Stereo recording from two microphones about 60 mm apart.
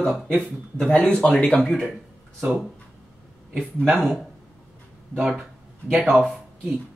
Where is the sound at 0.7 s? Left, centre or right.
Centre.